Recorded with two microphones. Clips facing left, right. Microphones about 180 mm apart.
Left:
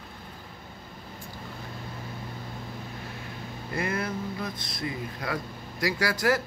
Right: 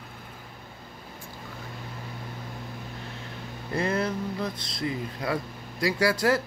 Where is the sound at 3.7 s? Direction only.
25° right (ahead or behind).